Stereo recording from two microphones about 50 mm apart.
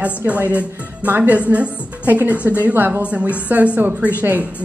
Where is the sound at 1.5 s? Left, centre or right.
Right.